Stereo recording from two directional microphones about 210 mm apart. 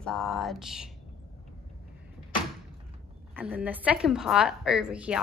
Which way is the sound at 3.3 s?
5° right (ahead or behind).